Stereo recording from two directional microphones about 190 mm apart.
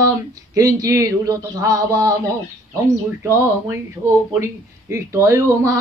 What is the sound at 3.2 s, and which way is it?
Speech, 15° right (ahead or behind).